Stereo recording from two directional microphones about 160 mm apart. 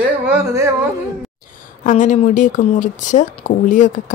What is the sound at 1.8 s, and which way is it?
Speech, 50° left (ahead or behind).